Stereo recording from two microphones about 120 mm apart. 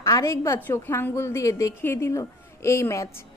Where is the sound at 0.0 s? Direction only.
25° left (ahead or behind).